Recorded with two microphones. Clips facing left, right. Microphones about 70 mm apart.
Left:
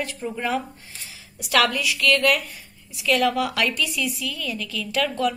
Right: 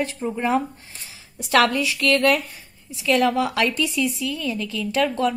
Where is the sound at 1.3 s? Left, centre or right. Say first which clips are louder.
Right 3 dB; right.